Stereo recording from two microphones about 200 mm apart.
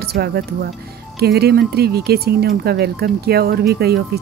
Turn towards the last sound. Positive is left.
turn(degrees=-50)  # may be behind; listen again after turning